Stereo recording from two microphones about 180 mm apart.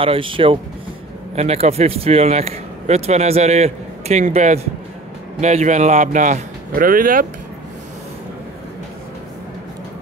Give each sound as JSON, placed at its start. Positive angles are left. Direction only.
{"t": 0.0, "sound": "speech", "side_deg": -30}